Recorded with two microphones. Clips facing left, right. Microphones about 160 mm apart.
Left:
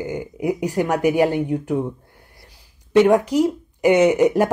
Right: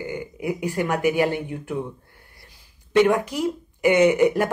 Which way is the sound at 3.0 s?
40° left (ahead or behind).